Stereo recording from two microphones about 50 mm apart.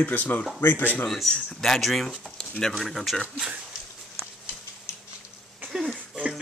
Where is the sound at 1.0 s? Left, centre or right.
Centre.